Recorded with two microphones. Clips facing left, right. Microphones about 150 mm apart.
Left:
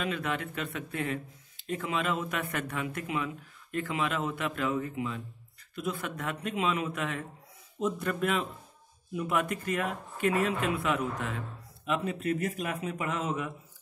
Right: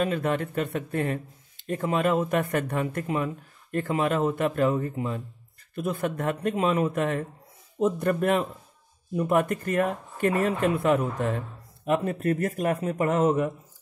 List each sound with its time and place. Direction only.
0.0 s speech: 45° right (ahead or behind)